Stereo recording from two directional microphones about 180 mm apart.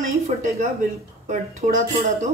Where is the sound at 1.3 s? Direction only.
45° right (ahead or behind).